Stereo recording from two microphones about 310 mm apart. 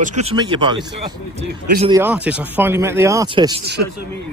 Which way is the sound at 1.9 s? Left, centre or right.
Centre.